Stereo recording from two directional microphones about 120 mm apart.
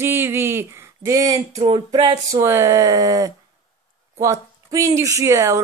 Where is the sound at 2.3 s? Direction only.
25° right (ahead or behind).